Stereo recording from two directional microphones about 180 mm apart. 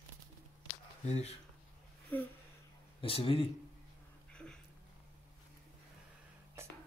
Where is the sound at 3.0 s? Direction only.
30° left (ahead or behind).